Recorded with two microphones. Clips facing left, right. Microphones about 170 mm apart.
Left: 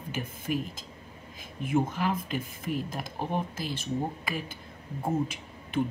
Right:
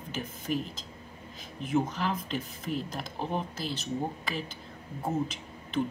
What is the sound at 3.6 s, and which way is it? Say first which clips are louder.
Speech: left 1 dB; 50° left (ahead or behind).